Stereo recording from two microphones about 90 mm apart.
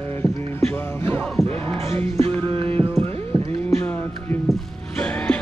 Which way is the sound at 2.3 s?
85° right.